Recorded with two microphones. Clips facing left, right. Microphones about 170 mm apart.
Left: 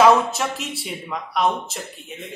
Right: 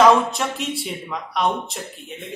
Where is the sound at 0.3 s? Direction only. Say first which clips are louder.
Right 1 dB; centre (ahead or behind).